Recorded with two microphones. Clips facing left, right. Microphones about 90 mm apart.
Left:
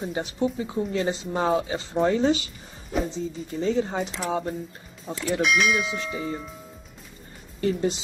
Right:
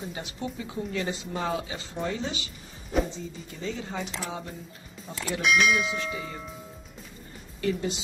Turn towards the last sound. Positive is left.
turn(degrees=35)  # may be behind; listen again after turning